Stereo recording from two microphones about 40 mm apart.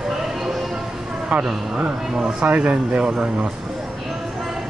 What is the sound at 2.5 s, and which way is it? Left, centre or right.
Speech, right.